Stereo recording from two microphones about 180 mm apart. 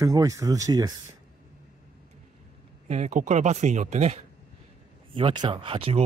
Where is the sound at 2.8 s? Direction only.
40° right (ahead or behind).